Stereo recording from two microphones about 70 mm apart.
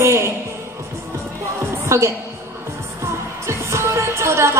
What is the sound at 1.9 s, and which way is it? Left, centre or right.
Speech, right.